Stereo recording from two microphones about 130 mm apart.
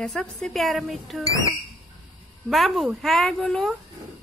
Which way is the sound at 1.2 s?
25° left (ahead or behind).